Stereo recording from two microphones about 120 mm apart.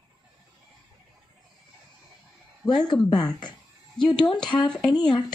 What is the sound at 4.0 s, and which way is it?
Speech, 40° left (ahead or behind).